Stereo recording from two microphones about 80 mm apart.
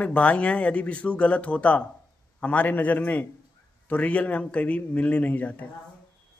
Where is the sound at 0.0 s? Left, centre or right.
Centre.